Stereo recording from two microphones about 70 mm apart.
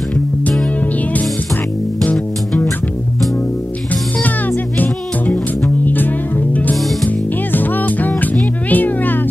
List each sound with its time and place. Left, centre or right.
4.7 s music: left
6.8 s music: centre
7.1 s music: left